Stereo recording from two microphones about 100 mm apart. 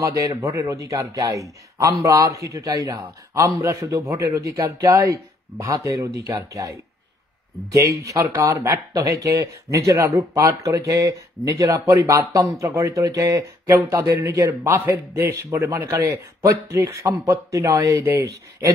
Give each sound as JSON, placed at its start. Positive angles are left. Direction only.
{"t": 0.0, "sound": "a man's voice", "side_deg": -30}